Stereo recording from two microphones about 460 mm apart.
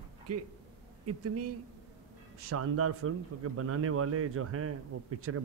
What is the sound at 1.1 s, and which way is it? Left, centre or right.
A man's voice, right.